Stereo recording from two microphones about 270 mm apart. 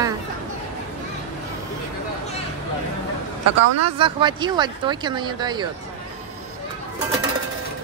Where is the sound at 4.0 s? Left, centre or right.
Centre.